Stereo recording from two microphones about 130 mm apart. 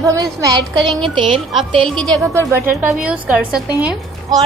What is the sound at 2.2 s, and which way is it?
Speech, 20° right (ahead or behind).